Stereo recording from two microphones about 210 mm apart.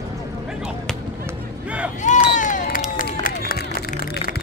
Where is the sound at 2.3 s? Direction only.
35° left (ahead or behind).